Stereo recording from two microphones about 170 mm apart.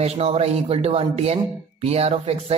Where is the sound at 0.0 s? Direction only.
35° right (ahead or behind).